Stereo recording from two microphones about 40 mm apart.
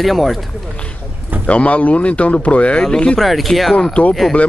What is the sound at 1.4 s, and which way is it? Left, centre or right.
Speech, left.